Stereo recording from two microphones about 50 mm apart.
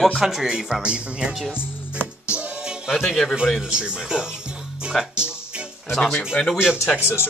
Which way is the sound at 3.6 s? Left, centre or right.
Centre.